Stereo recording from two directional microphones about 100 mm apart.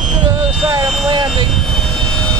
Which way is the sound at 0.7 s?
50° right (ahead or behind).